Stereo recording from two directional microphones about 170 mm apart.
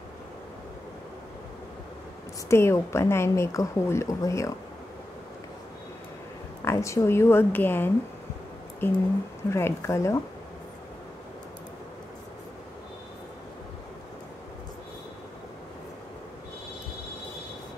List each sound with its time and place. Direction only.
2.4 s a woman's voice: 15° left (ahead or behind)
6.6 s a woman's voice: 15° left (ahead or behind)